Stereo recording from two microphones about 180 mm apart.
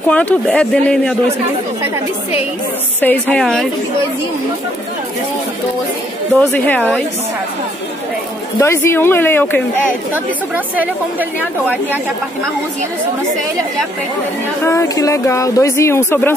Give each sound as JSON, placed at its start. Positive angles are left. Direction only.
{"t": 0.1, "sound": "speech", "side_deg": 10}
{"t": 3.0, "sound": "speech", "side_deg": 10}
{"t": 6.5, "sound": "speech", "side_deg": 10}
{"t": 8.5, "sound": "speech", "side_deg": 15}
{"t": 10.1, "sound": "a woman's voice", "side_deg": -10}
{"t": 14.6, "sound": "speech", "side_deg": 15}